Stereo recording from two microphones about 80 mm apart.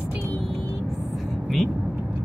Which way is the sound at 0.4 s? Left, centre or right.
Centre.